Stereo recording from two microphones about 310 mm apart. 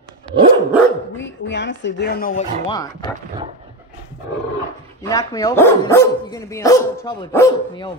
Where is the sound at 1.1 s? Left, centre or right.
Left.